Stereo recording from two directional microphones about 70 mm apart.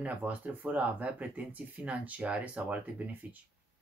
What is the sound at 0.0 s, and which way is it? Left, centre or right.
Speech, right.